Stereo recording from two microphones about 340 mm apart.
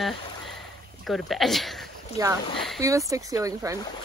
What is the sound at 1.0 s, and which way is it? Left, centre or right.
Speech, centre.